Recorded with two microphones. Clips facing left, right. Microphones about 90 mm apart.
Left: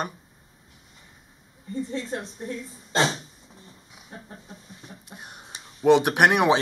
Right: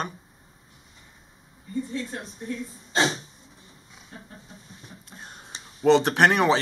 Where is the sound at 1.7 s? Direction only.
30° left (ahead or behind).